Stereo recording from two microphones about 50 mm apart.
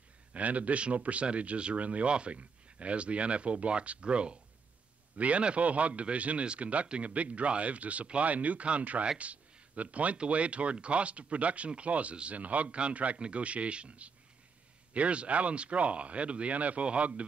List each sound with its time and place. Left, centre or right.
0.3 s speech: right